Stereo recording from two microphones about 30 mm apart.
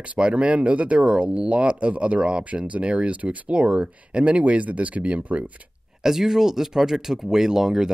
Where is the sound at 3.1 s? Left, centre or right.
Right.